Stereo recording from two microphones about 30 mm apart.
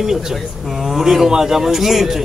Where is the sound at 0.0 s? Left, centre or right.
Centre.